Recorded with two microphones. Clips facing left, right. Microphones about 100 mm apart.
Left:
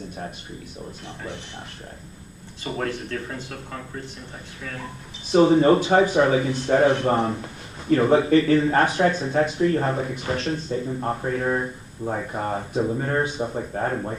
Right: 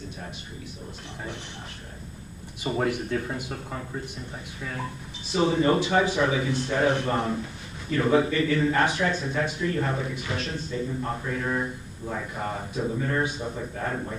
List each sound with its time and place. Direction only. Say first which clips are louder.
2.6 s speech: right 2 dB; 10° right (ahead or behind)
5.5 s speech: left 6 dB; 40° left (ahead or behind)